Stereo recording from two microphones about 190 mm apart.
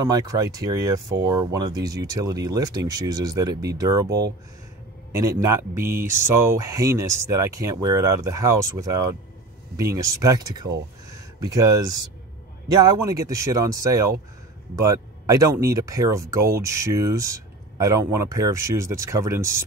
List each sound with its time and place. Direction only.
0.0 s speech: 20° right (ahead or behind)